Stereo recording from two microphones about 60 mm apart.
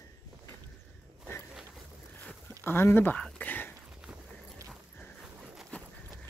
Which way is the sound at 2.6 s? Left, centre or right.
Left.